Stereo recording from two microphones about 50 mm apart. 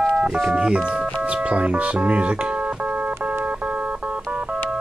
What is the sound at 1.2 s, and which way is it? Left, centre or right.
Music, right.